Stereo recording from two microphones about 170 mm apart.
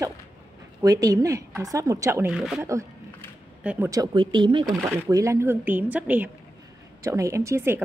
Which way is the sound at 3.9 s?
25° right (ahead or behind).